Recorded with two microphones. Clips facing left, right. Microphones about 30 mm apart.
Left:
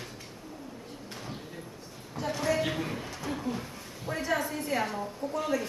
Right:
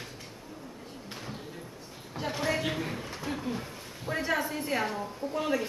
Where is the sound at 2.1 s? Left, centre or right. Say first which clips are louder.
Left 1 dB; centre.